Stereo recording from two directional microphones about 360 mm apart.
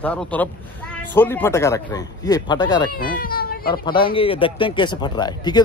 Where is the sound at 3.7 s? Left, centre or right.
Centre.